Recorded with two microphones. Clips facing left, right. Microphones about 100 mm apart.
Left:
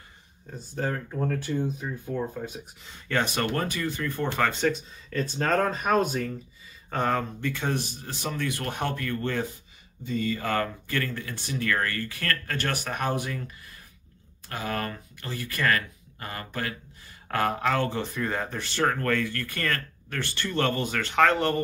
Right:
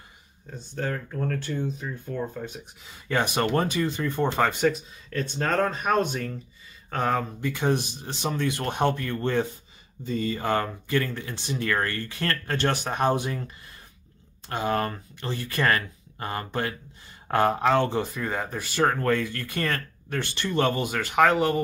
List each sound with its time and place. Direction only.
0.5 s speech: 5° left (ahead or behind)
3.1 s speech: 15° right (ahead or behind)
7.3 s speech: 15° right (ahead or behind)
14.5 s speech: 25° right (ahead or behind)
18.1 s speech: 5° right (ahead or behind)